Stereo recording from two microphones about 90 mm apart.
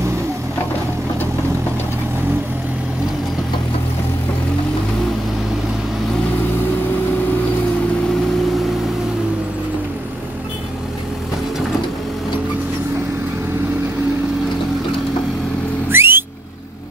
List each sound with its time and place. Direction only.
15.9 s vehicle: 25° right (ahead or behind)